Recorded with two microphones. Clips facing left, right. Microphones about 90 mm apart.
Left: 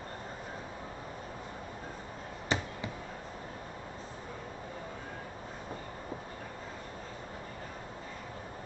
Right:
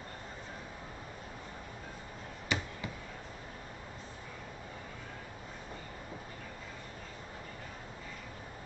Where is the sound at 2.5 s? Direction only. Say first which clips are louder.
Left 3 dB; 35° left (ahead or behind).